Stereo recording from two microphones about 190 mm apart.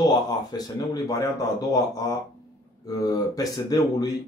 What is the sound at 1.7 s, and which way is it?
Speech, 20° left (ahead or behind).